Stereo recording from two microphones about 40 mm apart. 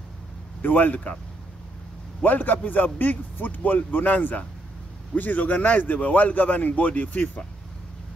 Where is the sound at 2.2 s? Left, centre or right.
Left.